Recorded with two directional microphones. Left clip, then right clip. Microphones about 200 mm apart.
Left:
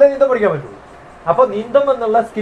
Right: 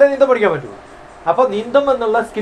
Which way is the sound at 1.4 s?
30° right (ahead or behind).